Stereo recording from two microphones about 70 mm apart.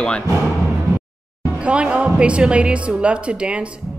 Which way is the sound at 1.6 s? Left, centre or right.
Centre.